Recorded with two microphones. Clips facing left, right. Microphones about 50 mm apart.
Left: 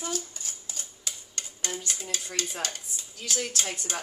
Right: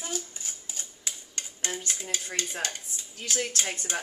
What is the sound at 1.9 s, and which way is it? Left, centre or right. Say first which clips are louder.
Stir: right 1 dB; right.